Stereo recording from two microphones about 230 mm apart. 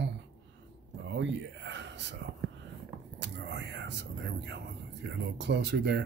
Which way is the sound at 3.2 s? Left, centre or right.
Right.